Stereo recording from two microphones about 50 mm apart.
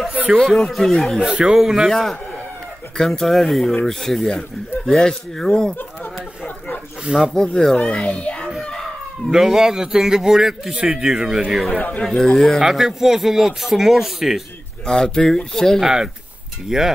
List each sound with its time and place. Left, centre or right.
0.4 s speech: centre
1.2 s a man's voice: centre
1.9 s a man's voice: centre
7.1 s speech: right
7.6 s a child's voice: centre
9.3 s a man's voice: centre
12.0 s speech: centre
12.4 s a man's voice: centre
14.9 s speech: centre
15.8 s a man's voice: centre